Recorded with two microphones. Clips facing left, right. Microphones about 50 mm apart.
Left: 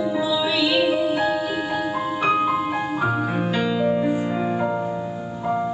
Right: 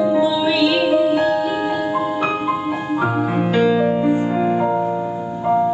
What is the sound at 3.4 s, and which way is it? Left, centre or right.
Music, centre.